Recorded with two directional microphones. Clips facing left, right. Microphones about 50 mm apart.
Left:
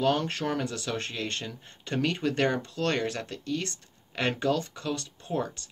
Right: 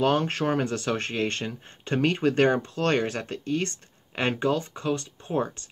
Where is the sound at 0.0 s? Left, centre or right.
Right.